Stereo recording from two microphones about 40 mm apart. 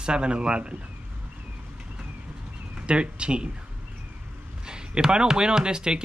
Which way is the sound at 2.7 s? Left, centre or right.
Right.